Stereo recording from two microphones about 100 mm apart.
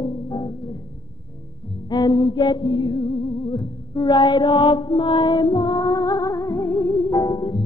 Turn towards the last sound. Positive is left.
turn(degrees=50)  # may be behind; listen again after turning